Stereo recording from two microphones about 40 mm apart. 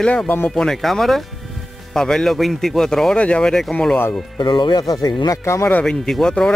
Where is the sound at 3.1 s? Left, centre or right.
Left.